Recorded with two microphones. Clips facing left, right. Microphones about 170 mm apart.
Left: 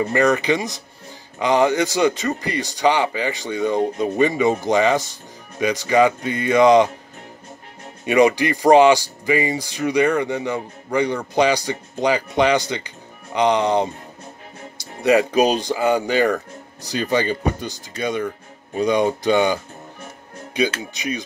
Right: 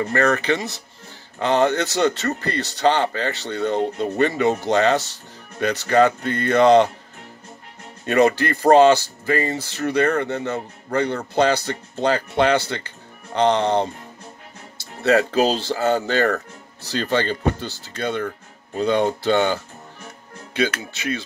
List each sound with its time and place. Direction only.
0.0 s speech: 15° left (ahead or behind)
8.0 s speech: 15° left (ahead or behind)